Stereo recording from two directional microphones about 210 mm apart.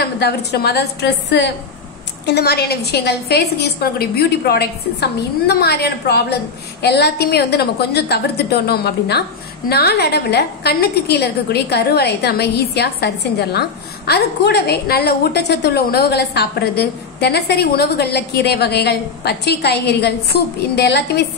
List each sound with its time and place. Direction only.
0.0 s a woman's voice: 50° left (ahead or behind)